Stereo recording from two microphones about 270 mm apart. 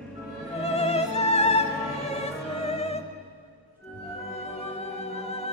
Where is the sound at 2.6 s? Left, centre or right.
Left.